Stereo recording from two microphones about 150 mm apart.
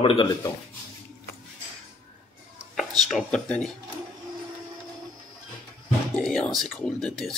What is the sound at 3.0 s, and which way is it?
Speech, centre (ahead or behind).